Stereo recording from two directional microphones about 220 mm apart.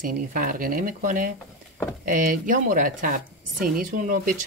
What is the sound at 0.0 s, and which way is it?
Speech, 40° right (ahead or behind).